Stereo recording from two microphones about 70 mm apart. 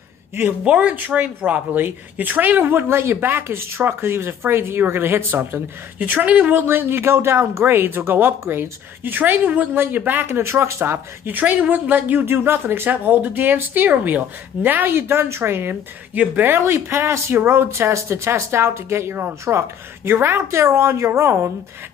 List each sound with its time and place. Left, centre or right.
0.7 s speech: centre; by 11.0 s right
11.2 s speech: right
15.7 s speech: right
16.5 s speech: right